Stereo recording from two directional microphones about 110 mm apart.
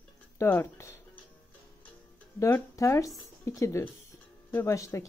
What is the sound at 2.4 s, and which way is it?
Speech, 30° left (ahead or behind).